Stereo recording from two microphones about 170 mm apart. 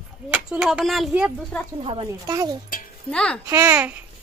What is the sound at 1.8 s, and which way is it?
Speech, 35° right (ahead or behind).